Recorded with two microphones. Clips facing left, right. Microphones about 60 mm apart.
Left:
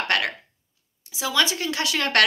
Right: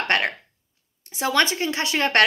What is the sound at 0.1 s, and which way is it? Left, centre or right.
Speech, right.